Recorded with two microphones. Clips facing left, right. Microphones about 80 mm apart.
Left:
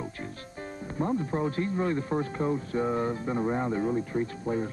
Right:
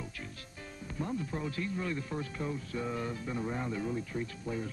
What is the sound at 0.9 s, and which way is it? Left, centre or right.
Speech, left.